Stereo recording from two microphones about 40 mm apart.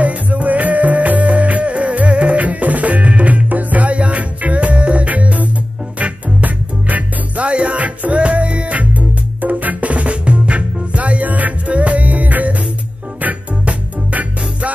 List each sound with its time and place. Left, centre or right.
0.0 s music: right